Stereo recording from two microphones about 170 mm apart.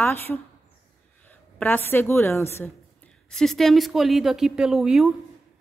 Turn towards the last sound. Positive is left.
turn(degrees=0)  # may be behind; listen again after turning